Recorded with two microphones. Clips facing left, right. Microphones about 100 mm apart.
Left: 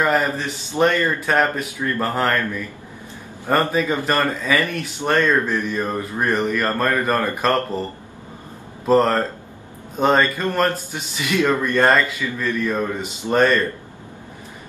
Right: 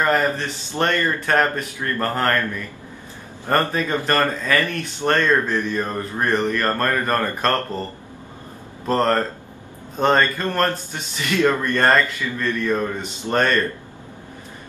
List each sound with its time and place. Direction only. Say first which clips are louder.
0.0 s speech: even; 5° left (ahead or behind)
3.4 s speech: left 2 dB; 5° left (ahead or behind)
8.8 s speech: left 3 dB; 5° left (ahead or behind)